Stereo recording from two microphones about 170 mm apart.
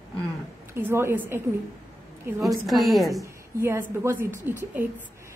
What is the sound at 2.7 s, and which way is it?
Speech, centre (ahead or behind).